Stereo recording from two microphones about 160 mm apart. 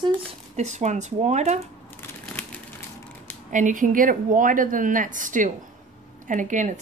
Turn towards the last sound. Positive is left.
turn(degrees=-50)  # may be behind; listen again after turning